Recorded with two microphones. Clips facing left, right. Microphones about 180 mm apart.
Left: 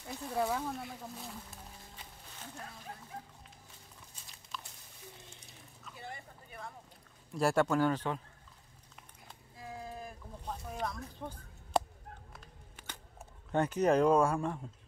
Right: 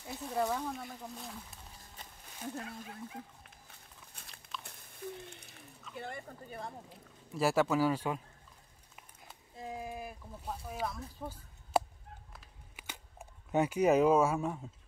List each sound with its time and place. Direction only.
0.0 s speech: centre (ahead or behind)
3.4 s walk: 60° right (ahead or behind)
4.6 s a sound: 60° right (ahead or behind)
5.9 s speech: 55° right (ahead or behind)
6.9 s speech: centre (ahead or behind)
9.6 s boat: 15° right (ahead or behind)
12.3 s camera: 5° right (ahead or behind)